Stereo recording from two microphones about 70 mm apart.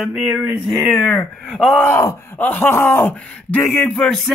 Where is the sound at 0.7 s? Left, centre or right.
Centre.